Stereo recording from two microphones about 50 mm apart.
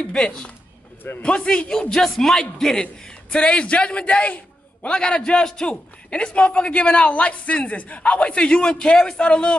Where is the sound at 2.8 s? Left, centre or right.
Left.